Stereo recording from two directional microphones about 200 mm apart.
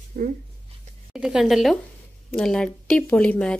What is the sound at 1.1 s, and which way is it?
A woman's voice, 5° right (ahead or behind).